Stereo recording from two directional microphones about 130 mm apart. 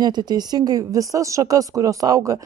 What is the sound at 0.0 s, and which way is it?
Speech, 30° right (ahead or behind).